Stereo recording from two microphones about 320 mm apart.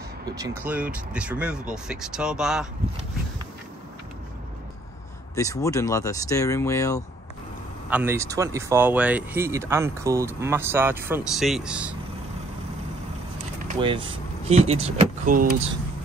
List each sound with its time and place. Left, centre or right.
0.2 s speech: centre
5.3 s speech: centre
7.9 s speech: centre
13.7 s speech: centre